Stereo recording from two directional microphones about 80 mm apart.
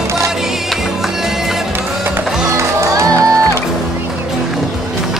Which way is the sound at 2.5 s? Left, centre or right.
Right.